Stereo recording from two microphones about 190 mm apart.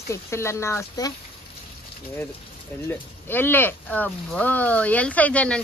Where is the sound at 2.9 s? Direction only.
10° left (ahead or behind).